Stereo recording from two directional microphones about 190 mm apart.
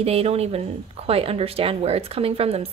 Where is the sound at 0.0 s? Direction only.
30° right (ahead or behind).